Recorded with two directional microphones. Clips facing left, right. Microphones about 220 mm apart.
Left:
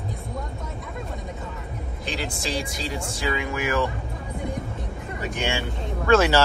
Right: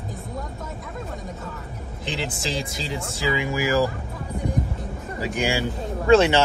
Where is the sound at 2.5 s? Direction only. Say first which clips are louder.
Left 1 dB; 25° right (ahead or behind).